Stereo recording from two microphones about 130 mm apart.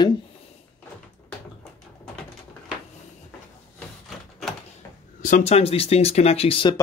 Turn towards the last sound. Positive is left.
turn(degrees=45)  # may be behind; listen again after turning